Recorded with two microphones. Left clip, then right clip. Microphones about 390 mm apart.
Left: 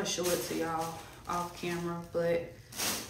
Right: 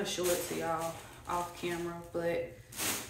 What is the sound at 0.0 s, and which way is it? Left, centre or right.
A woman's voice, centre.